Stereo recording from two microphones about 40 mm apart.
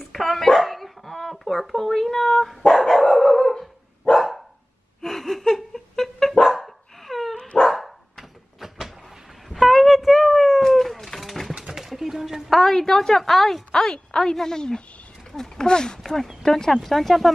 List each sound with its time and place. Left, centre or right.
0.0 s dog: centre
5.0 s laughter: centre
6.4 s dog: centre
7.3 s dog: left
7.6 s dog: centre
8.5 s power windows: centre
9.5 s a sound: centre
12.4 s a woman's voice: centre
13.7 s speech: centre